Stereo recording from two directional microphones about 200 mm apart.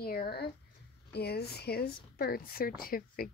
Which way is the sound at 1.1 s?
55° left (ahead or behind).